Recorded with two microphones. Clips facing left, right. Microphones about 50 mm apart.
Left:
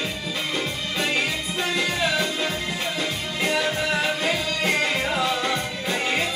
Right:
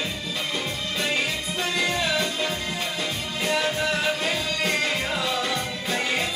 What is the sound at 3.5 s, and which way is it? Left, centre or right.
Music, centre.